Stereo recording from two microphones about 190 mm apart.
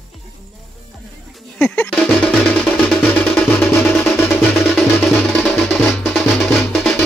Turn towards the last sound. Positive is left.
turn(degrees=0)  # may be behind; listen again after turning